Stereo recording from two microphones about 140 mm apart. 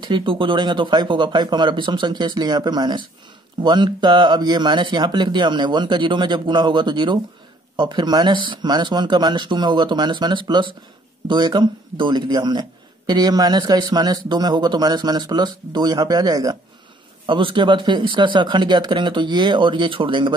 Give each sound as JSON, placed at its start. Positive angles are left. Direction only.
{"t": 0.0, "sound": "a man's voice", "side_deg": -35}